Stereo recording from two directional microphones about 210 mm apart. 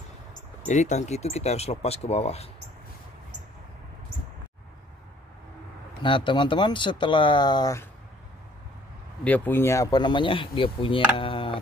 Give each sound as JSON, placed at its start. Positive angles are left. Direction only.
{"t": 0.7, "sound": "speech", "side_deg": 35}
{"t": 6.0, "sound": "speech", "side_deg": 25}
{"t": 9.2, "sound": "speech", "side_deg": 10}